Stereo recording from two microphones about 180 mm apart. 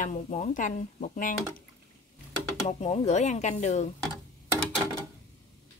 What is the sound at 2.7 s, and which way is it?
Speech, 35° left (ahead or behind).